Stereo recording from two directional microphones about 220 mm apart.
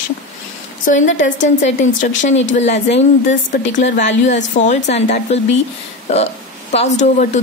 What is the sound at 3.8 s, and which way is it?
A woman's voice, 30° left (ahead or behind).